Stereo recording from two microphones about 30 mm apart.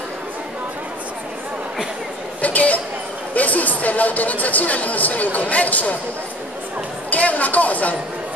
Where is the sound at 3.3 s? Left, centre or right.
Left.